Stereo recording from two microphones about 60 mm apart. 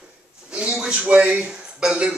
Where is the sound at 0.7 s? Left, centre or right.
Centre.